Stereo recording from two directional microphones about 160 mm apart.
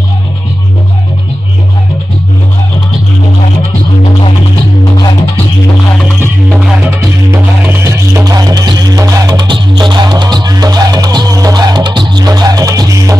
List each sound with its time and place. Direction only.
7.8 s music: 20° right (ahead or behind)